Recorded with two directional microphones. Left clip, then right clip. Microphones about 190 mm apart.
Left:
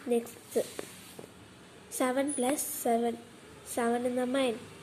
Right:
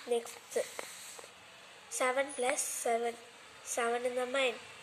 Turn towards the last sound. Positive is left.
turn(degrees=-5)  # may be behind; listen again after turning